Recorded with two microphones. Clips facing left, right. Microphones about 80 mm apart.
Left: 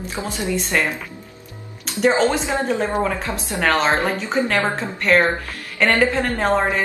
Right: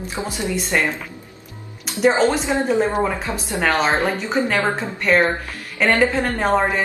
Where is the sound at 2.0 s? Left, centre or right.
Centre.